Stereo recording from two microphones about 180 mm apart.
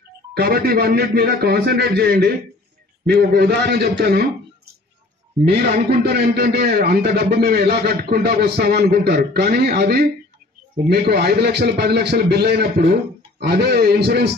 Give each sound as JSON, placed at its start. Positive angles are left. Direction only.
{"t": 0.3, "sound": "a man's voice", "side_deg": -60}
{"t": 5.4, "sound": "a man's voice", "side_deg": -65}